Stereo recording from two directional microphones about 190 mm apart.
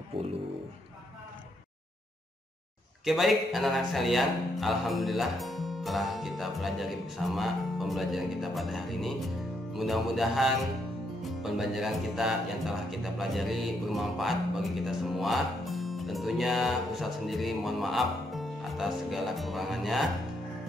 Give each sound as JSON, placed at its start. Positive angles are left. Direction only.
{"t": 0.1, "sound": "speech", "side_deg": -30}
{"t": 3.1, "sound": "speech", "side_deg": 0}